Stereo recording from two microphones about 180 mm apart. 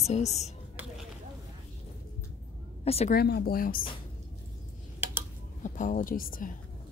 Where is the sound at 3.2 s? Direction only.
60° left (ahead or behind).